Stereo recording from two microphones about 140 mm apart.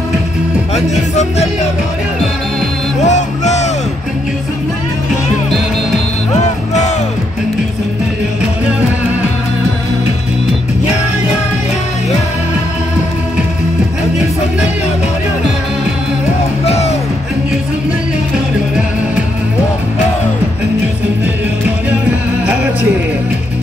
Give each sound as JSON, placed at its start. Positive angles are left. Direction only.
{"t": 0.7, "sound": "music", "side_deg": 55}
{"t": 3.0, "sound": "music", "side_deg": 55}
{"t": 16.6, "sound": "music", "side_deg": 50}